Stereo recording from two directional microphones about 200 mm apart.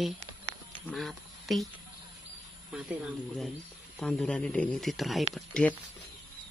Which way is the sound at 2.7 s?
5° right (ahead or behind).